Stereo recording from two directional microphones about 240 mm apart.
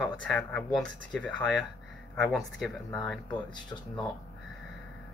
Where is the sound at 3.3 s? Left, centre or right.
Centre.